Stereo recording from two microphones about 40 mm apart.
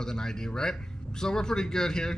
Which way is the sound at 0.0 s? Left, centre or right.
Centre.